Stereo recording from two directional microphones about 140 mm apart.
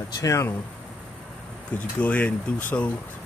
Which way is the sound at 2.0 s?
10° left (ahead or behind).